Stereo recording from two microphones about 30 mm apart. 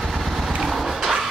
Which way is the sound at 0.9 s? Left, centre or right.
Centre.